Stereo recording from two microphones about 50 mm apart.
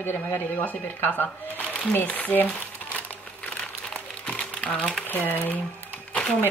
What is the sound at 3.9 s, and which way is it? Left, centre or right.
Crumpling, left.